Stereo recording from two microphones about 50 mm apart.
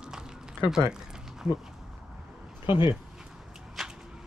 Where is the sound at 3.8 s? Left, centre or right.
Centre.